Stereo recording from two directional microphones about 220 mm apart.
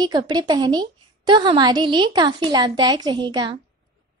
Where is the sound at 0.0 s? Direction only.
20° right (ahead or behind).